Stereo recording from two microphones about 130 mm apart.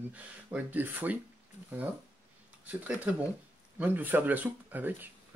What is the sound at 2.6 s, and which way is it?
Speech, 10° right (ahead or behind).